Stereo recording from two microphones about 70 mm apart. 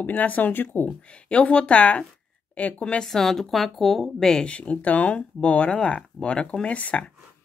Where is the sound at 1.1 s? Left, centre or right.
Centre.